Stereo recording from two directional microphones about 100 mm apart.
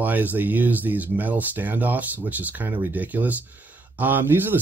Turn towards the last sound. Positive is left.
turn(degrees=-20)  # may be behind; listen again after turning